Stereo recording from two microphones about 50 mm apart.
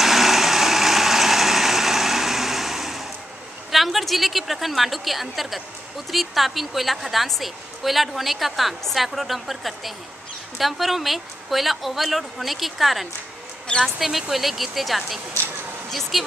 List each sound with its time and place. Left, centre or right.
0.0 s vehicle: centre
3.7 s a woman's voice: centre